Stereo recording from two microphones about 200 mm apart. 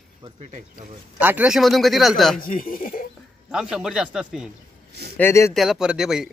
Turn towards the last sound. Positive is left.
turn(degrees=-5)  # may be behind; listen again after turning